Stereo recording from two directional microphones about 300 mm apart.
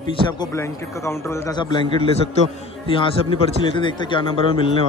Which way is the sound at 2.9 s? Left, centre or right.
Centre.